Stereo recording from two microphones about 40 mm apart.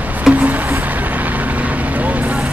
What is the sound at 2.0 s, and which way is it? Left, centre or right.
Vehicle, right.